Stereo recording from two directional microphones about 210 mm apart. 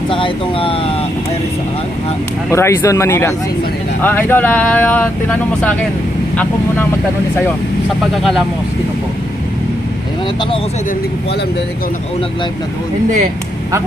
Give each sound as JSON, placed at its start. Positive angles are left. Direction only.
{"t": 0.1, "sound": "speech", "side_deg": 25}
{"t": 2.5, "sound": "speech", "side_deg": 15}
{"t": 8.1, "sound": "speech", "side_deg": 0}